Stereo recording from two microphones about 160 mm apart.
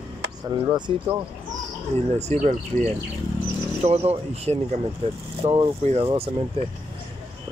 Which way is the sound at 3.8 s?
40° right (ahead or behind).